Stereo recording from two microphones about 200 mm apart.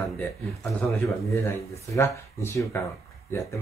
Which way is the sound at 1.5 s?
15° left (ahead or behind).